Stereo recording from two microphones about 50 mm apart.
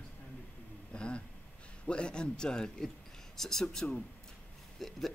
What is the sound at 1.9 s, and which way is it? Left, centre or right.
Speech, centre.